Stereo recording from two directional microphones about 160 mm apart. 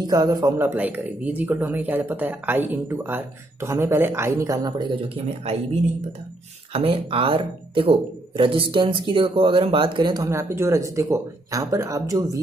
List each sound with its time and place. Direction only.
0.0 s speech: 25° right (ahead or behind)
5.1 s speech: 40° right (ahead or behind)
6.7 s speech: 35° right (ahead or behind)
10.2 s speech: 15° right (ahead or behind)